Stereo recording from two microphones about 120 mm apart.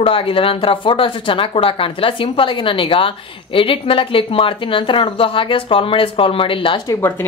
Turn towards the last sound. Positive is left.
turn(degrees=45)  # may be behind; listen again after turning